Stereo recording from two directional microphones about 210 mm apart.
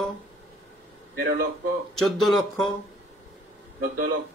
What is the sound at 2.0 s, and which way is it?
Speech, centre (ahead or behind).